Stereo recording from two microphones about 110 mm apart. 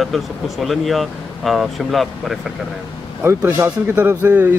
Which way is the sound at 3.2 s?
25° right (ahead or behind).